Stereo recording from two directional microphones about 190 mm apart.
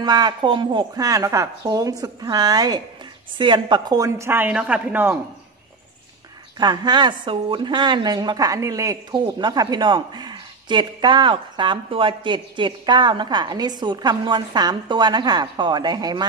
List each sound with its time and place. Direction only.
0.0 s a woman's voice: 20° right (ahead or behind)
6.6 s a woman's voice: 20° right (ahead or behind)